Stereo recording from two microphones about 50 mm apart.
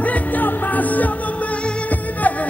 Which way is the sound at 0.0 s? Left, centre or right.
Left.